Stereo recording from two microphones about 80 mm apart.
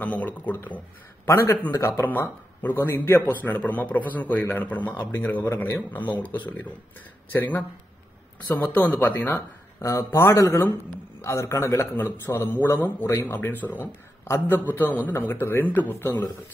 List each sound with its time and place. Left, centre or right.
0.0 s a man's voice: centre
1.2 s a man's voice: left
2.0 s a man's voice: left
9.2 s a man's voice: left